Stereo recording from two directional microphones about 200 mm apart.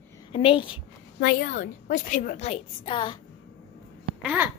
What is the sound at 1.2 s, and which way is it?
A woman's voice, 50° left (ahead or behind).